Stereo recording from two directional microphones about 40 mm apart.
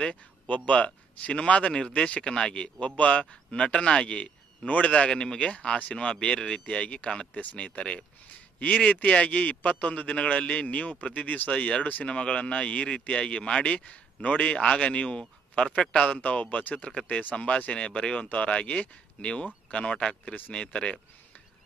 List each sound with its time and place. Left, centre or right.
0.7 s speech: left
4.9 s a man's voice: left
16.1 s a man's voice: left